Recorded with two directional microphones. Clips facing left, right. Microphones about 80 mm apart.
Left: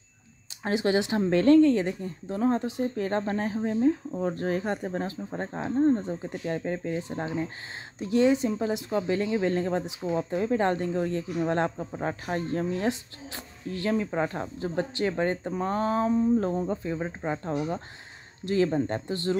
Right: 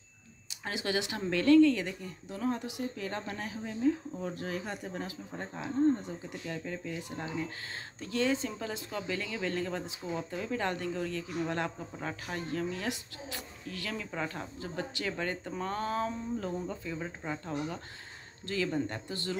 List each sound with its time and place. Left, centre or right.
0.7 s speech: left
7.0 s speech: left
8.0 s speech: left